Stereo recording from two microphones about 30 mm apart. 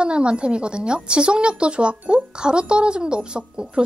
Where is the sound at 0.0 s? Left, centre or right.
Right.